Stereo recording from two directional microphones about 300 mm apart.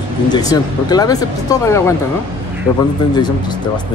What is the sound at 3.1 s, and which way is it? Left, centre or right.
Speech, centre.